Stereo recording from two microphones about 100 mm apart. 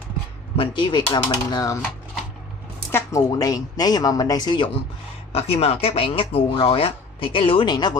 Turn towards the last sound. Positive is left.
turn(degrees=45)  # may be behind; listen again after turning